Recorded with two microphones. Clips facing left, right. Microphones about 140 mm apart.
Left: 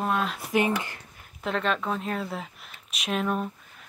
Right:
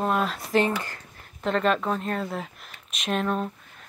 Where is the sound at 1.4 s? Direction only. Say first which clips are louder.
Right 4 dB; centre (ahead or behind).